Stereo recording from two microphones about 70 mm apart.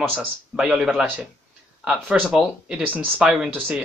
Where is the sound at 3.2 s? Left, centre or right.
Centre.